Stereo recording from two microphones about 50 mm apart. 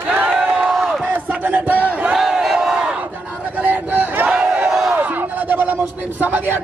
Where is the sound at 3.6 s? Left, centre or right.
Right.